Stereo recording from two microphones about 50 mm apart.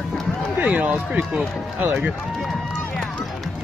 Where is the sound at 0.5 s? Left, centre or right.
Right.